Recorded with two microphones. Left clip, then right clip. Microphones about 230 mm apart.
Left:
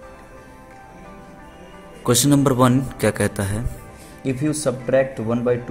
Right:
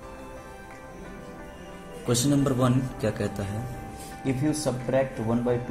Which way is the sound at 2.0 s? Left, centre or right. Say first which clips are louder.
Left 8 dB; left.